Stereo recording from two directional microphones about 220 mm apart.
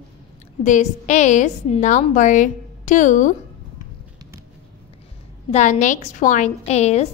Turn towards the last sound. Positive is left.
turn(degrees=30)  # may be behind; listen again after turning